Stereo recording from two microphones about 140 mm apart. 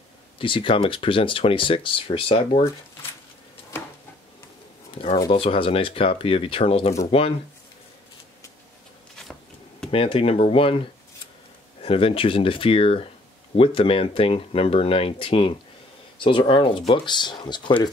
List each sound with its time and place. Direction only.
0.4 s speech: 40° left (ahead or behind)
5.3 s speech: 40° left (ahead or behind)
9.8 s speech: 40° left (ahead or behind)
11.8 s speech: 40° left (ahead or behind)